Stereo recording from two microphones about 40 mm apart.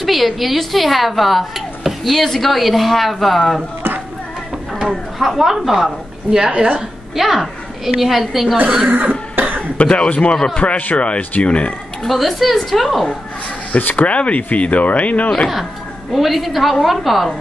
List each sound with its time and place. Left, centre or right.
0.0 s speech: centre
4.8 s speech: centre
6.3 s a woman's voice: right
7.2 s speech: centre
8.8 s speech: right
9.3 s cough: right
9.8 s speech: left
10.3 s speech: left
11.0 s speech: left
12.1 s speech: centre
13.7 s speech: left
16.1 s speech: centre